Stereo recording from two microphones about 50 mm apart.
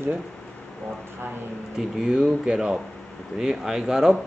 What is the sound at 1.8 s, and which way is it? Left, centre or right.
Speech, centre.